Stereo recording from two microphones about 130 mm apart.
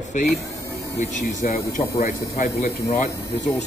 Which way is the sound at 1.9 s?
55° left (ahead or behind).